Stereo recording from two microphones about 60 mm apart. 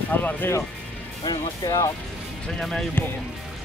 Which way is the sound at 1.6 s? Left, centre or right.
Left.